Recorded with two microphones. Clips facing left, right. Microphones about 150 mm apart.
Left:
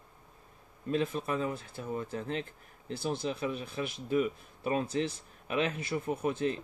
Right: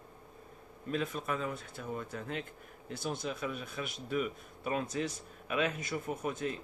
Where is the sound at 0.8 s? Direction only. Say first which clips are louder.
Left 4 dB; 30° left (ahead or behind).